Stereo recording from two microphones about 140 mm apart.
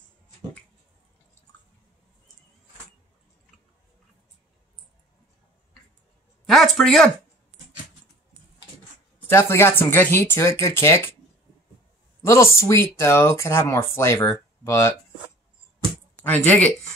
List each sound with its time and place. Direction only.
6.4 s a sound: centre (ahead or behind)
9.3 s speech: 20° left (ahead or behind)
12.3 s speech: 20° left (ahead or behind)
16.2 s speech: 10° left (ahead or behind)